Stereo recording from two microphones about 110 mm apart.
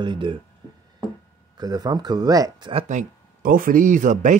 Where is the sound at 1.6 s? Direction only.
40° right (ahead or behind).